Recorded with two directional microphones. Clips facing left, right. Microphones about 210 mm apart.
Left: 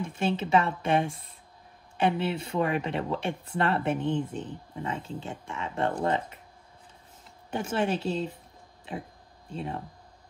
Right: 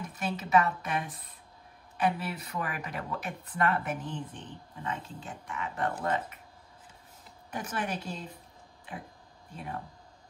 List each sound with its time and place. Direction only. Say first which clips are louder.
0.0 s speech: left 7 dB; 25° left (ahead or behind)
7.5 s speech: left 7 dB; 25° left (ahead or behind)